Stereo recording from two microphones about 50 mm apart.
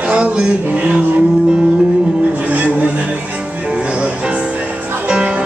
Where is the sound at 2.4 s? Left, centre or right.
Right.